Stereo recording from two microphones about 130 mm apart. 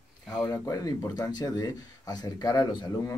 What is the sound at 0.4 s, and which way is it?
Speech, 30° left (ahead or behind).